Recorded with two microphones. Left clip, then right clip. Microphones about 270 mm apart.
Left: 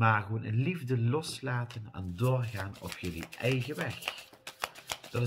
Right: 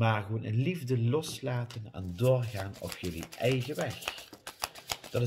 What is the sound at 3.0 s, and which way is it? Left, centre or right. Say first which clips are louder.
Speech: right 3 dB; right.